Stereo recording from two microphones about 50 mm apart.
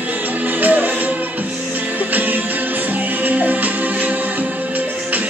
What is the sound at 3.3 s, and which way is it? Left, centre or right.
Music, right.